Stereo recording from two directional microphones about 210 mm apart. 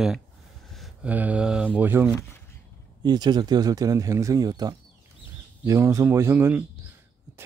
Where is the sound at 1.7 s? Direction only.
10° right (ahead or behind).